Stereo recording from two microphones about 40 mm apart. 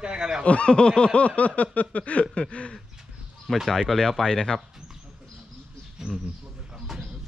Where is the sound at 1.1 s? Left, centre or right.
Left.